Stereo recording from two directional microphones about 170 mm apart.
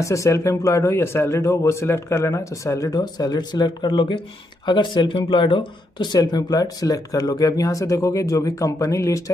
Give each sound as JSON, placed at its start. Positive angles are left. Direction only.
{"t": 0.0, "sound": "speech", "side_deg": 20}